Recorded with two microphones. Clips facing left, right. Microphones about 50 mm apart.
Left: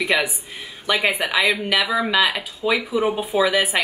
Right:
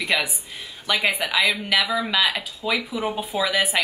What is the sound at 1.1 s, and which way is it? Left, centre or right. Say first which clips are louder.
Speech: left 2 dB; centre.